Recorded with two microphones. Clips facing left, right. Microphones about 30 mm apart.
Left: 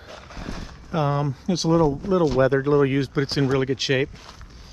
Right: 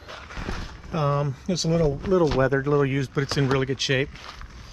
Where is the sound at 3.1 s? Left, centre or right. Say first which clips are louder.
Left 2 dB; left.